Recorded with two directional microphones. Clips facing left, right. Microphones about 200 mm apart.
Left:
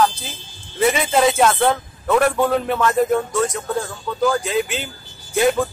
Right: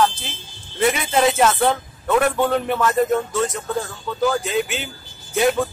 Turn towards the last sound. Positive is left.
turn(degrees=0)  # may be behind; listen again after turning